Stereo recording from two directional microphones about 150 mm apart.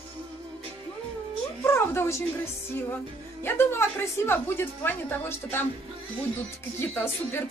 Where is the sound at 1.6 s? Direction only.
15° left (ahead or behind).